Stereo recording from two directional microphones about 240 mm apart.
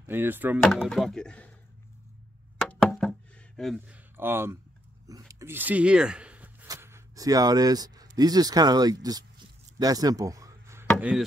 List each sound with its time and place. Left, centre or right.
0.0 s speech: centre
2.6 s knock: centre
5.3 s a sound: centre
8.2 s speech: centre
11.0 s chop: centre